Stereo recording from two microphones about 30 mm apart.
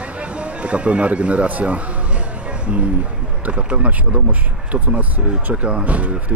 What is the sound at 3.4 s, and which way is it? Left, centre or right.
Speech, right.